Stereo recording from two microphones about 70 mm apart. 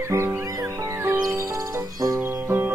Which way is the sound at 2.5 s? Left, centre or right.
Right.